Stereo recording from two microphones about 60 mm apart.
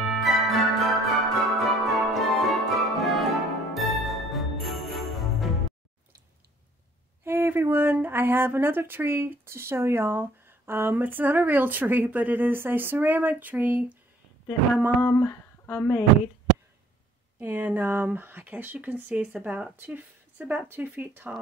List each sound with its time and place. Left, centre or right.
0.1 s music: centre
7.2 s speech: right
15.0 s speech: left
15.6 s speech: left
17.4 s a woman's voice: right